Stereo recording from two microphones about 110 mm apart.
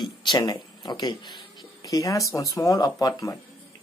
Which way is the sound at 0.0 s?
40° left (ahead or behind).